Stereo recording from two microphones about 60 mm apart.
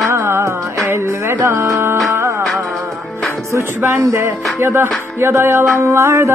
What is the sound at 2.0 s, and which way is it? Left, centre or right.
Music, right.